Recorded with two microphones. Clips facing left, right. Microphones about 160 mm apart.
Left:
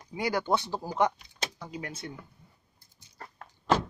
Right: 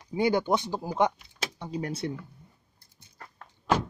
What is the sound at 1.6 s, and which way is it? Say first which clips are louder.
Speech: right 7 dB; 35° right (ahead or behind).